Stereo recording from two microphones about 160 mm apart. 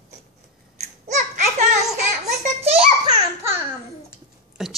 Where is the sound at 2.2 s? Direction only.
40° right (ahead or behind).